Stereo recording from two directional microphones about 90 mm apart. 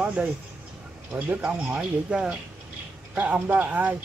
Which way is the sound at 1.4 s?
10° right (ahead or behind).